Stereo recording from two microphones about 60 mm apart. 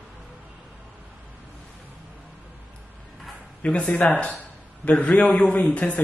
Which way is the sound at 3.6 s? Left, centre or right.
Centre.